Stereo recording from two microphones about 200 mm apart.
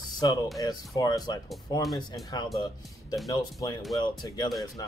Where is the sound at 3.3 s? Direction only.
20° left (ahead or behind).